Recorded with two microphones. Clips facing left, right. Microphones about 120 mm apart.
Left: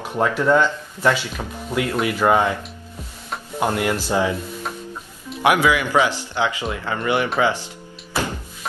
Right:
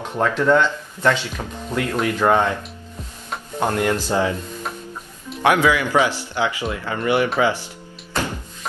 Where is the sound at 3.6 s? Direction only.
10° left (ahead or behind).